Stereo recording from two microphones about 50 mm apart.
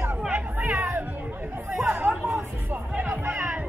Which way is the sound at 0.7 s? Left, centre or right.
Right.